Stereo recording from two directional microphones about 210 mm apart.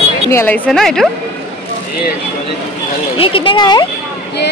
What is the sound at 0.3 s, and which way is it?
Speech, 10° left (ahead or behind).